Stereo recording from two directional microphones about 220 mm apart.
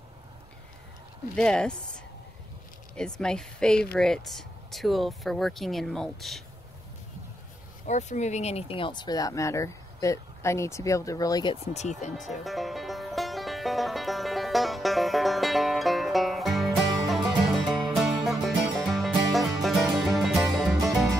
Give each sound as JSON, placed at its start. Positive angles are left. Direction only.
{"t": 1.3, "sound": "speech", "side_deg": 5}
{"t": 3.2, "sound": "speech", "side_deg": 5}
{"t": 7.8, "sound": "speech", "side_deg": 35}
{"t": 12.4, "sound": "music", "side_deg": 0}